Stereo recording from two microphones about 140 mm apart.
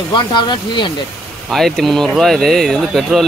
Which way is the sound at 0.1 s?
35° left (ahead or behind).